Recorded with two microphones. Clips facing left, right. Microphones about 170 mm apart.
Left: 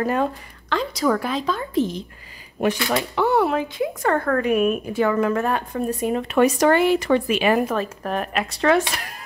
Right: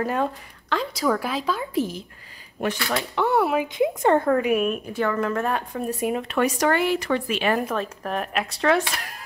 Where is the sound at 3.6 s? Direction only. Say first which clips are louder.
Right 2 dB; 20° right (ahead or behind).